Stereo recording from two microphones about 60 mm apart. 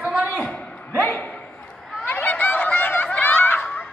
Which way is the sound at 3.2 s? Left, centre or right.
Left.